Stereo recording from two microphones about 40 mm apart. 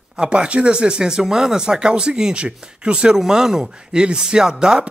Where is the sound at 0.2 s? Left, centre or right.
Right.